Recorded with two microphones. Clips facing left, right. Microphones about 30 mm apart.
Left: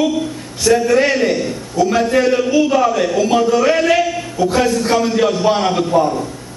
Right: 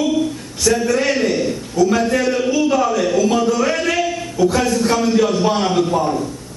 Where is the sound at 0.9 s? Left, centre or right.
Centre.